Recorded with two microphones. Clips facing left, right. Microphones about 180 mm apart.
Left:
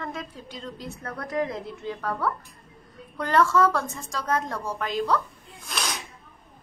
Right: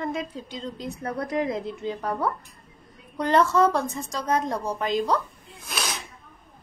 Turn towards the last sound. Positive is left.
turn(degrees=-5)  # may be behind; listen again after turning